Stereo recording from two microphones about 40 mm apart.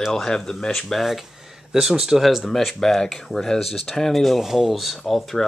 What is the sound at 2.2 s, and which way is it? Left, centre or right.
Speech, centre.